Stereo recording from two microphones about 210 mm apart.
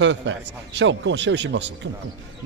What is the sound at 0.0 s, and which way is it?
A man's voice, 60° right (ahead or behind).